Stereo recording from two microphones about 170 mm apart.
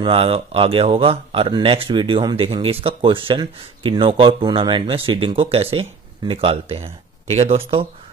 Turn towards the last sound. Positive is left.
turn(degrees=-35)  # may be behind; listen again after turning